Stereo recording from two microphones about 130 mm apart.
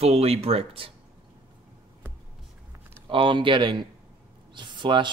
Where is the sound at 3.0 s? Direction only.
40° right (ahead or behind).